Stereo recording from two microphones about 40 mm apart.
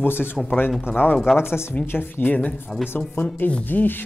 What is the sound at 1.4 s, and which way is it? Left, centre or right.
Speech, left.